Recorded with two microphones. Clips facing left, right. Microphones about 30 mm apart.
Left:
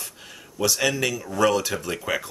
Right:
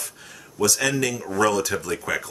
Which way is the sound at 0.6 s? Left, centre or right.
Centre.